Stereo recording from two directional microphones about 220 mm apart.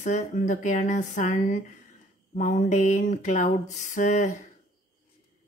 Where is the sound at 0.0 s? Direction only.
35° left (ahead or behind).